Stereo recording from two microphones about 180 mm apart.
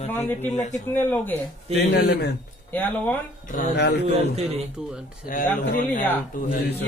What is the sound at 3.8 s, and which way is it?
Speech, 65° left (ahead or behind).